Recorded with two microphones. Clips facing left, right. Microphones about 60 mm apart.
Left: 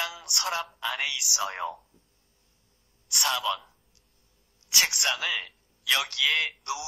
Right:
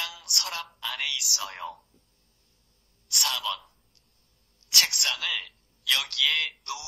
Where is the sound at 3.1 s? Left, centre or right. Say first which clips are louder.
Left 3 dB; centre.